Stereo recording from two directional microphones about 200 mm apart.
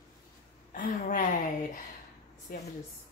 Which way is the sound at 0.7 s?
45° left (ahead or behind).